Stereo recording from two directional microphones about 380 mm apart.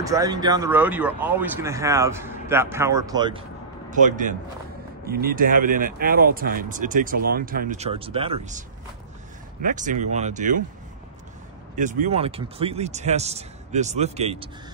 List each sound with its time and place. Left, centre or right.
0.0 s speech: centre
11.7 s speech: centre